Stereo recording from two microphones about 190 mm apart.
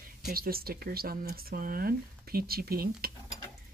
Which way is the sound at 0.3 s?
50° right (ahead or behind).